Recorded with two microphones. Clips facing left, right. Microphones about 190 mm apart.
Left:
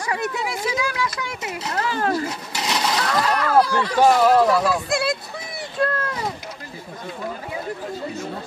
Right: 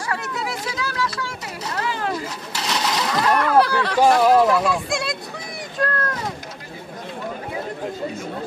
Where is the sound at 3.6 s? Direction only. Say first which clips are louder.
Right 1 dB; 65° right (ahead or behind).